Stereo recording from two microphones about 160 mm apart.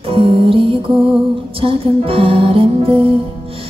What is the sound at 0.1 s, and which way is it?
Music, 35° right (ahead or behind).